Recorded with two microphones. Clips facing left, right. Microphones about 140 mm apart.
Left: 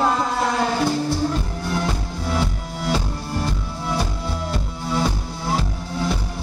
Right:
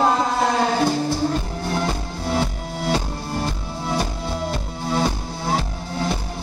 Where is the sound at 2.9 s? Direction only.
15° right (ahead or behind).